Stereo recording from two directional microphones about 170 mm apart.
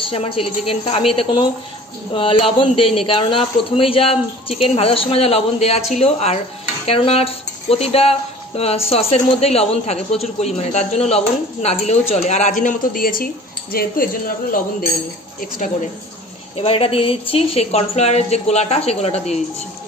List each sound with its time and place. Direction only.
0.0 s speech: 35° left (ahead or behind)
12.6 s speech: 55° left (ahead or behind)
16.5 s speech: 35° left (ahead or behind)